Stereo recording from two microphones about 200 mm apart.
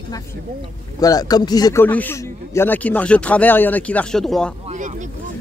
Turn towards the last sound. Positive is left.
turn(degrees=0)  # may be behind; listen again after turning